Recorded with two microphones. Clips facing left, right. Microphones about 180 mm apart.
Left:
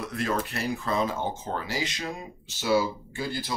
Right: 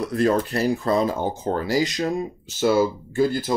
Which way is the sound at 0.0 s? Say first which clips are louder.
Right 9 dB; 35° right (ahead or behind).